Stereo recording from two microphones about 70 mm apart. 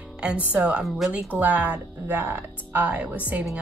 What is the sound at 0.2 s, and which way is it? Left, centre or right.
Speech, centre.